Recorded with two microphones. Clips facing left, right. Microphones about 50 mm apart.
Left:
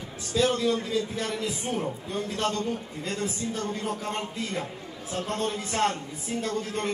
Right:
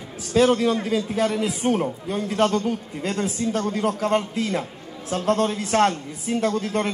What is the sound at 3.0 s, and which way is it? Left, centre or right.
A man's voice, right.